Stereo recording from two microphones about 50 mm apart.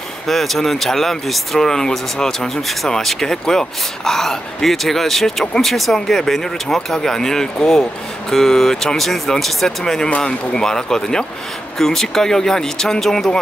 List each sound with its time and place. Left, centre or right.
0.3 s speech: centre
10.0 s speech: left
10.5 s speech: centre